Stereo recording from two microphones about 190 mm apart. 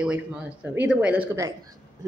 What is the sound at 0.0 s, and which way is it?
Speech, 5° right (ahead or behind).